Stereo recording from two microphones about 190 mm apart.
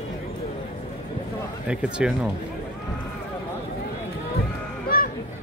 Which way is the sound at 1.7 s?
5° right (ahead or behind).